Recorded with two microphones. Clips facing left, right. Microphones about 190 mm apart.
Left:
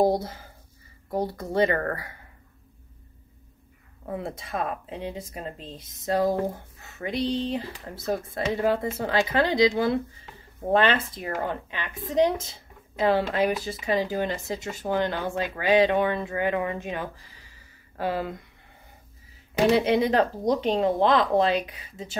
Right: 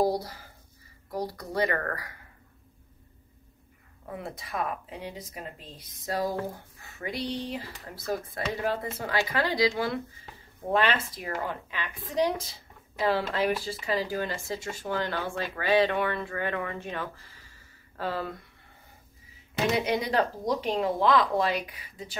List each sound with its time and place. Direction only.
0.0 s speech: 25° left (ahead or behind)
4.1 s speech: 25° left (ahead or behind)
19.7 s speech: 30° left (ahead or behind)